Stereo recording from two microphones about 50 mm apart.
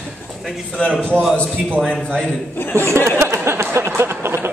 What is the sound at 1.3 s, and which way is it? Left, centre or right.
Speech, left.